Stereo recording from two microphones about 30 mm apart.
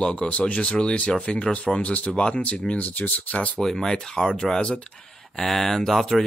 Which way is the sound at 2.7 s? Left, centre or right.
Left.